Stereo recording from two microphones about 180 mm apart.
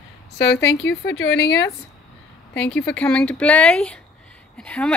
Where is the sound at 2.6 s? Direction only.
5° left (ahead or behind).